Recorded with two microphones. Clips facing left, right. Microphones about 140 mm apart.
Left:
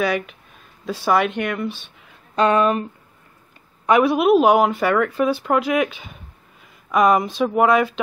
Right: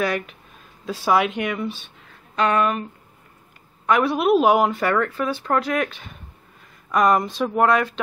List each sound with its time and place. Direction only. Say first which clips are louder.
0.0 s speech: left 2 dB; 5° left (ahead or behind)
2.3 s speech: left 3 dB; 30° left (ahead or behind)
3.8 s speech: left 3 dB; 10° left (ahead or behind)